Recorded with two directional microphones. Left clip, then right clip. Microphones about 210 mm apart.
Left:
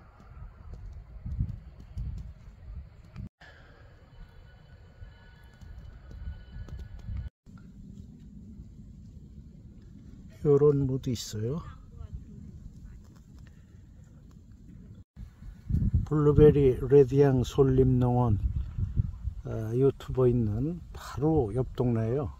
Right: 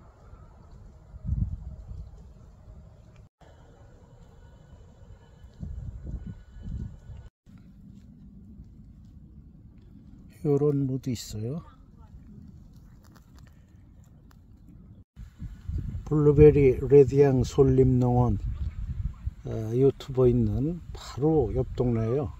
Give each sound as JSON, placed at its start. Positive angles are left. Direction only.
{"t": 10.4, "sound": "speech", "side_deg": -10}
{"t": 16.0, "sound": "speech", "side_deg": -5}
{"t": 19.4, "sound": "speech", "side_deg": -5}